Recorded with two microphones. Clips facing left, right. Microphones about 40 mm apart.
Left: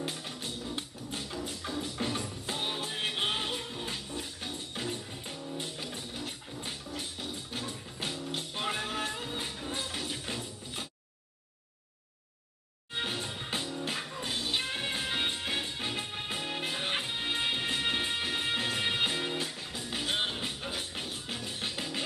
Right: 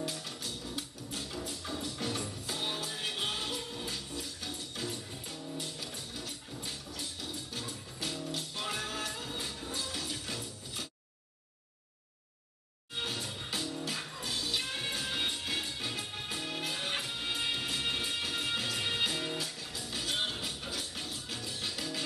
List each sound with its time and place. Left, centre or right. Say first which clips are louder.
0.0 s music: left 1 dB; left
12.9 s music: left 3 dB; left